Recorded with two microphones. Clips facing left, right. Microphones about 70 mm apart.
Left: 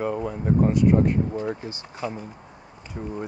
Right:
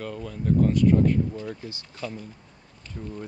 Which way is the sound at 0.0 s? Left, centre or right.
Left.